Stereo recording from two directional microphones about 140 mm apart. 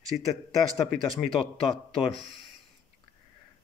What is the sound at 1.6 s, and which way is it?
Speech, 40° left (ahead or behind).